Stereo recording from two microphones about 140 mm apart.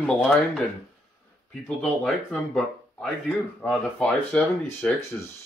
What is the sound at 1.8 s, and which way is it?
Speech, 5° left (ahead or behind).